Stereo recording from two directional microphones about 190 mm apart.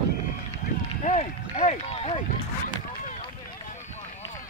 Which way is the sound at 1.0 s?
40° left (ahead or behind).